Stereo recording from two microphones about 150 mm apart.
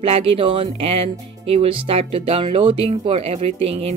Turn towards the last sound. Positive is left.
turn(degrees=-40)  # may be behind; listen again after turning